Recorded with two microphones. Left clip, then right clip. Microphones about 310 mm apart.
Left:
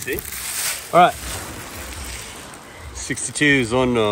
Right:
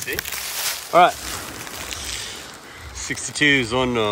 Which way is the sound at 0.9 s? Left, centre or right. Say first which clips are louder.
Left 1 dB; centre.